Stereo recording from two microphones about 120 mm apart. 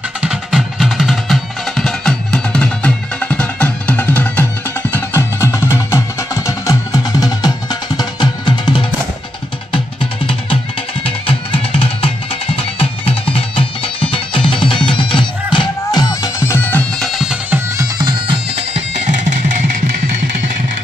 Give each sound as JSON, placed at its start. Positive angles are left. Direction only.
{"t": 0.2, "sound": "music", "side_deg": -5}
{"t": 17.0, "sound": "music", "side_deg": 0}
{"t": 17.7, "sound": "bagpipes", "side_deg": -35}
{"t": 18.5, "sound": "music", "side_deg": -60}